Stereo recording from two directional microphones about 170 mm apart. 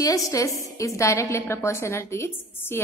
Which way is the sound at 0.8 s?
20° left (ahead or behind).